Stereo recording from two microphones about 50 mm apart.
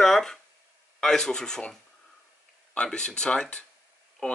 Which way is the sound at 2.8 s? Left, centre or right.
Centre.